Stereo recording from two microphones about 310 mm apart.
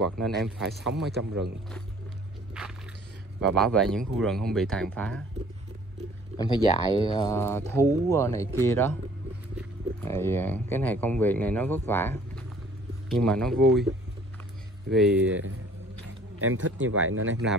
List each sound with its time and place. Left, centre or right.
0.7 s speech: centre
3.3 s speech: centre
6.3 s speech: centre
9.9 s speech: centre
15.1 s speech: right